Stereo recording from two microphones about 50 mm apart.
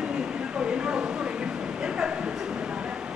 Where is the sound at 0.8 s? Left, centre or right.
Centre.